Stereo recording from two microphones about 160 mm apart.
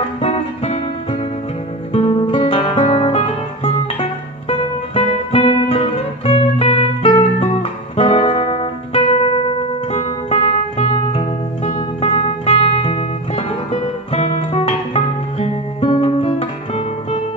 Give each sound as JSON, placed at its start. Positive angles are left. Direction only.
{"t": 0.2, "sound": "music", "side_deg": 40}
{"t": 2.0, "sound": "guitar", "side_deg": 35}
{"t": 4.5, "sound": "music", "side_deg": 35}
{"t": 15.3, "sound": "guitar", "side_deg": 40}